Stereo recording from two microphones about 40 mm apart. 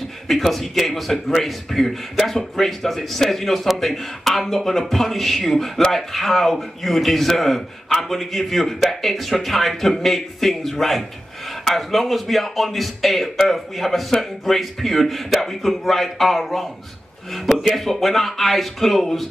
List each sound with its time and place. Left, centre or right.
0.3 s a man's voice: centre